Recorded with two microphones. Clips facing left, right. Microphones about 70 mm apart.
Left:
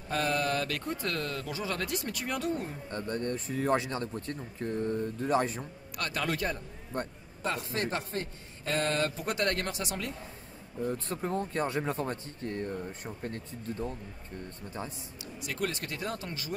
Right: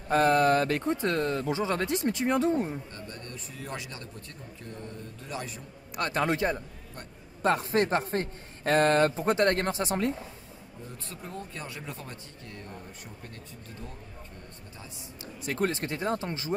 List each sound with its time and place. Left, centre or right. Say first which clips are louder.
0.1 s speech: right 8 dB; right
2.9 s speech: left 9 dB; left
5.9 s speech: right 5 dB; right
7.4 s a man's voice: right 8 dB; right
10.9 s speech: left 9 dB; left
15.4 s speech: right 5 dB; right